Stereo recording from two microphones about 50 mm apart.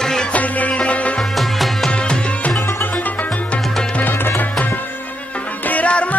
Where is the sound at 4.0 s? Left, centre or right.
Left.